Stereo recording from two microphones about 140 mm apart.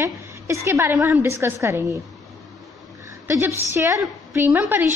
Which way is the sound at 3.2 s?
15° right (ahead or behind).